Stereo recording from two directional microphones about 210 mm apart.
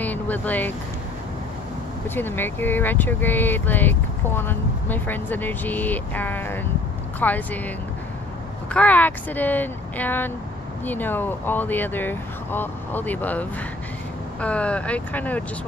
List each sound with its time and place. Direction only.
0.0 s speech: 10° left (ahead or behind)
2.0 s speech: 10° left (ahead or behind)
8.7 s speech: 5° left (ahead or behind)